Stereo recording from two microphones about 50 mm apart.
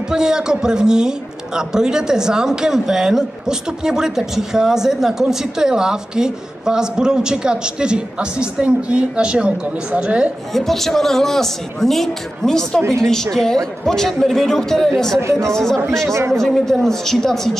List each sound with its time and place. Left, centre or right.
0.1 s a man's voice: centre
10.5 s a man's voice: centre